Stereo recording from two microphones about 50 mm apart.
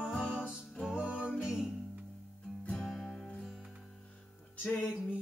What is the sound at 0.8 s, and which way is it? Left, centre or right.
Music, right.